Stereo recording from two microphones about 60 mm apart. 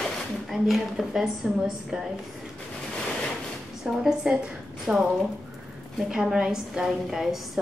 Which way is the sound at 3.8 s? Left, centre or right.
Centre.